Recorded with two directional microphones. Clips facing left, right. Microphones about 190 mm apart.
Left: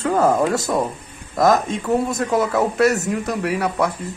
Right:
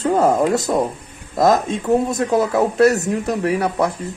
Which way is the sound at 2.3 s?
20° right (ahead or behind).